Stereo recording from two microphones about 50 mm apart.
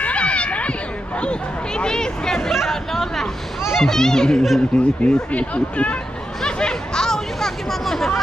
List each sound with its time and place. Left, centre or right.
0.0 s a sound: left
2.7 s chatter: centre
3.7 s a child's voice: centre
4.7 s speech: left
6.4 s chatter: centre